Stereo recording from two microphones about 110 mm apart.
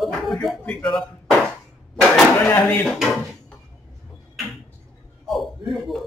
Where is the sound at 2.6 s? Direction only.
Centre (ahead or behind).